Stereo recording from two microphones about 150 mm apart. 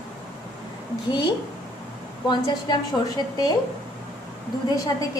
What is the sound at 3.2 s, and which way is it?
Speech, 25° left (ahead or behind).